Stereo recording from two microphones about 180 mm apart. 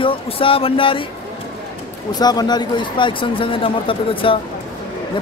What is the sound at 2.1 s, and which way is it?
Speech, 20° left (ahead or behind).